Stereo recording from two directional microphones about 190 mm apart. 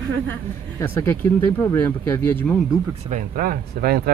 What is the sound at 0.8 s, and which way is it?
Speech, 15° left (ahead or behind).